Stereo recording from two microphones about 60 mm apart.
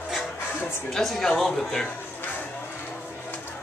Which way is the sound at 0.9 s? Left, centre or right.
Centre.